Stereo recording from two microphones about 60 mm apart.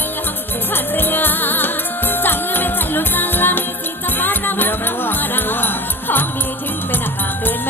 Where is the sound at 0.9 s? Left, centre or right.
Left.